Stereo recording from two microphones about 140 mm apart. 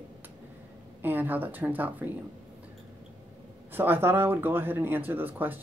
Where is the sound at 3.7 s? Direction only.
15° right (ahead or behind).